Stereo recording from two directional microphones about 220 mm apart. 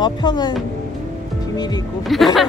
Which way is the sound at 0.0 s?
20° left (ahead or behind).